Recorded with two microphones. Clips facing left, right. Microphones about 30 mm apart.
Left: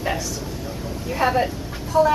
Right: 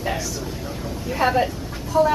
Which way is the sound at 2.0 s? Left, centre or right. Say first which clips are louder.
Left 1 dB; centre.